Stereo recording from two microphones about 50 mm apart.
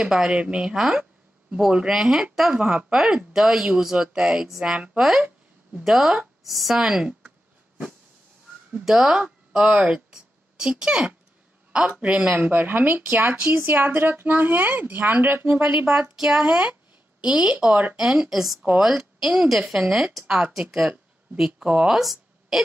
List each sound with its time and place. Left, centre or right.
0.0 s speech: centre
6.8 s a sound: centre
8.8 s speech: centre
12.3 s speech: right
15.5 s speech: right
16.2 s speech: centre
22.0 s a sound: centre